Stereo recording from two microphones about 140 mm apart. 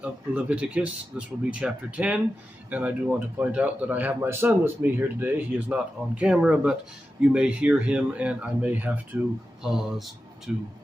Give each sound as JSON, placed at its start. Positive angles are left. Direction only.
{"t": 0.0, "sound": "speech", "side_deg": -10}